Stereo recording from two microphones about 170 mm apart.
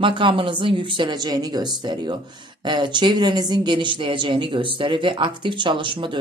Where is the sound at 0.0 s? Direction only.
30° right (ahead or behind).